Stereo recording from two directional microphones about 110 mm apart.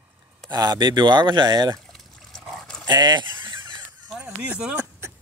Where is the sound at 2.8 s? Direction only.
40° right (ahead or behind).